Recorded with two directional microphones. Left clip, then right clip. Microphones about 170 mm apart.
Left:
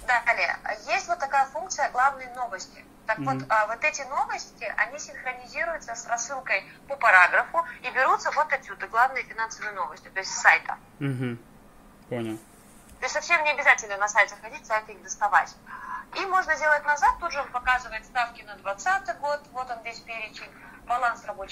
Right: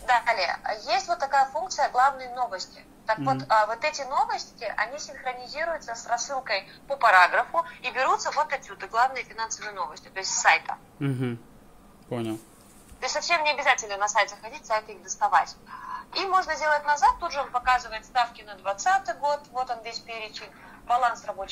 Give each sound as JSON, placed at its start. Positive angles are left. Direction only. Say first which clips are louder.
{"t": 0.0, "sound": "a woman's voice", "louder": "even", "side_deg": -25}
{"t": 11.0, "sound": "a woman's voice", "louder": "right 1 dB", "side_deg": -20}
{"t": 13.0, "sound": "a woman's voice", "louder": "left 1 dB", "side_deg": -10}
{"t": 17.2, "sound": "a woman's voice", "louder": "right 1 dB", "side_deg": -25}